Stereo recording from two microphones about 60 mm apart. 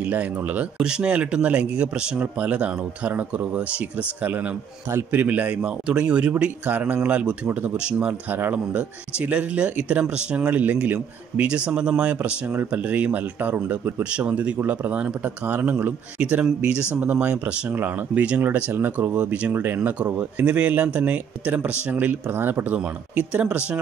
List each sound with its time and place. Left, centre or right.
0.0 s speech: right
0.7 s speech: centre
5.6 s speech: centre
8.1 s speech: right
8.7 s speech: right
14.0 s speech: right
17.6 s speech: right
19.5 s speech: right